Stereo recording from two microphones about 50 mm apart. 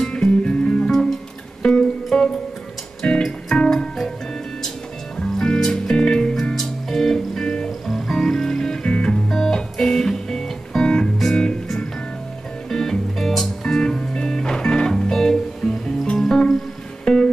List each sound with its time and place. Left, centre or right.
0.0 s music: centre
5.1 s music: centre
7.4 s music: centre
7.8 s music: centre